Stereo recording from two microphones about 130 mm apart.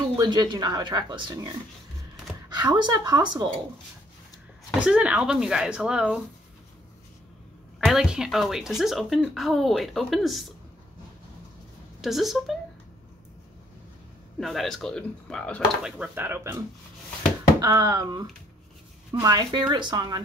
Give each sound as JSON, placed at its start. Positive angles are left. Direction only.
{"t": 0.1, "sound": "speech", "side_deg": -35}
{"t": 2.5, "sound": "speech", "side_deg": -35}
{"t": 4.7, "sound": "speech", "side_deg": -10}
{"t": 7.8, "sound": "speech", "side_deg": 0}
{"t": 12.0, "sound": "speech", "side_deg": 0}
{"t": 14.4, "sound": "speech", "side_deg": 0}
{"t": 15.8, "sound": "speech", "side_deg": -10}
{"t": 17.6, "sound": "a sound", "side_deg": -25}
{"t": 19.1, "sound": "speech", "side_deg": -30}